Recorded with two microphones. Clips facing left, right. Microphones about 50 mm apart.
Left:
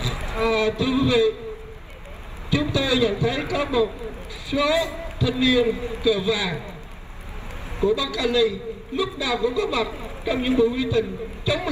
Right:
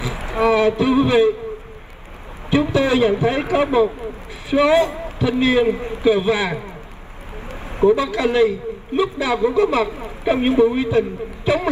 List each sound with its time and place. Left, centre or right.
0.0 s a sound: right
2.7 s a woman's voice: right
7.8 s a woman's voice: right
9.8 s a woman's voice: right